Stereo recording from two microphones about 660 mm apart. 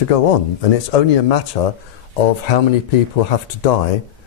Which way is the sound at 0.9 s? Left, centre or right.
Left.